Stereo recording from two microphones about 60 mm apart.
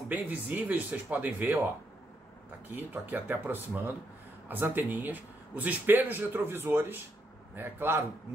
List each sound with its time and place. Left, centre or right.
0.1 s speech: right
2.7 s a man's voice: right